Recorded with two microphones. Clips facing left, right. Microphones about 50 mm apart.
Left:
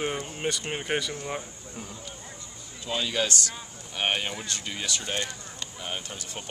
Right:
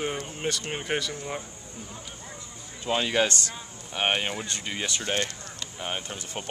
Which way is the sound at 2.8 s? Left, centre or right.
Right.